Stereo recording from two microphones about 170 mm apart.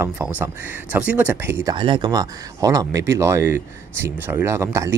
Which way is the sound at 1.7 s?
30° right (ahead or behind).